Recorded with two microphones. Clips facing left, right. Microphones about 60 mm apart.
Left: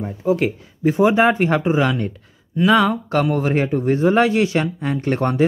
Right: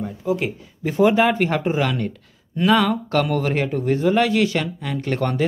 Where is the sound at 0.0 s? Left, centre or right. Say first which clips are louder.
Left 4 dB; left.